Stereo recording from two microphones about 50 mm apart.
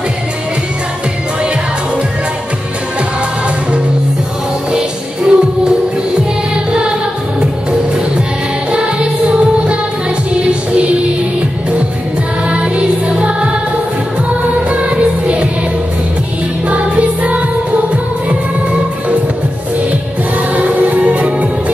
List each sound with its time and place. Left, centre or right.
4.7 s music: centre
8.7 s music: centre
10.4 s music: right
12.4 s music: right
14.7 s music: right
16.6 s music: right
20.5 s music: right